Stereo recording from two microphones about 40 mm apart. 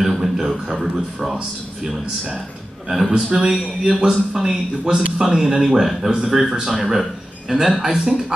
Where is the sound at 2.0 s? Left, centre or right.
Right.